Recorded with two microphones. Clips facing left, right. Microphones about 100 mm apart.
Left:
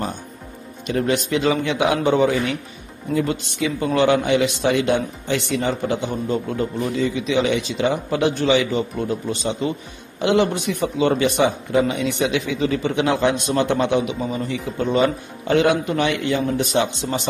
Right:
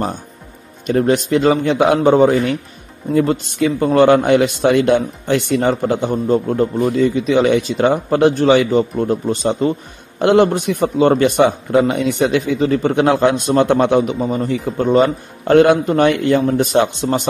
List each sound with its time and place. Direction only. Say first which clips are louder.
0.8 s a man's voice: right 6 dB; 40° right (ahead or behind)